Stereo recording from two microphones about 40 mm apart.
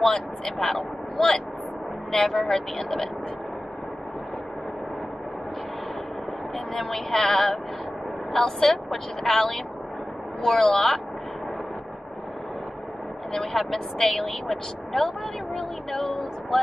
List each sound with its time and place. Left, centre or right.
0.0 s speech: centre
2.1 s a woman's voice: centre
6.7 s a woman's voice: centre
13.3 s speech: centre